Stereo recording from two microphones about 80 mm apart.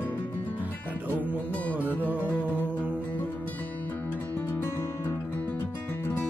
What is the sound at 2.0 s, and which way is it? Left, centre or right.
Music, right.